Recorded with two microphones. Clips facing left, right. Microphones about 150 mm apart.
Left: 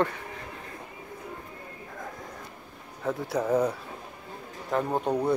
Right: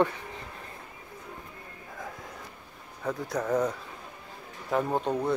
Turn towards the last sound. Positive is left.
turn(degrees=10)  # may be behind; listen again after turning